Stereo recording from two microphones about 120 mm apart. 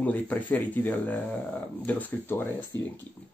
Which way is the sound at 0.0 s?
15° left (ahead or behind).